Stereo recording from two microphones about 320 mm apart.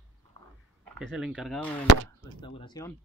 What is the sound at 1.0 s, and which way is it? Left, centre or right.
Speech, centre.